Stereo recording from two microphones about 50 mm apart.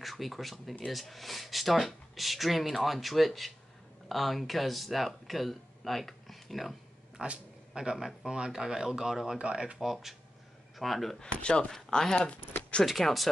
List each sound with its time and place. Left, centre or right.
0.0 s speech: centre
7.2 s speech: centre
9.4 s speech: right
9.8 s speech: centre
11.1 s speech: centre